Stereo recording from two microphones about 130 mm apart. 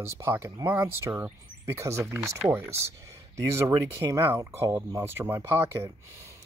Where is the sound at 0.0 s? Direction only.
20° right (ahead or behind).